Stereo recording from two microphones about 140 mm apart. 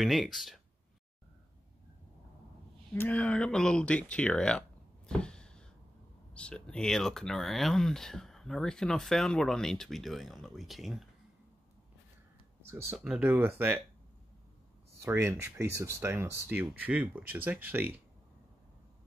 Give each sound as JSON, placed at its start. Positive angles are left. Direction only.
{"t": 0.0, "sound": "speech", "side_deg": 0}
{"t": 2.9, "sound": "speech", "side_deg": 15}
{"t": 12.9, "sound": "speech", "side_deg": -5}
{"t": 15.0, "sound": "speech", "side_deg": -15}